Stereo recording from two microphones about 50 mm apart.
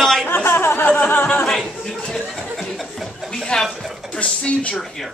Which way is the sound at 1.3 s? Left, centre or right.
Centre.